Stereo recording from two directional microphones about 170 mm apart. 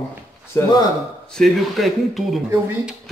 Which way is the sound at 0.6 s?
25° left (ahead or behind).